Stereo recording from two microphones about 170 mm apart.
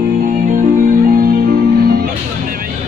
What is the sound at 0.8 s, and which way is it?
Music, 60° right (ahead or behind).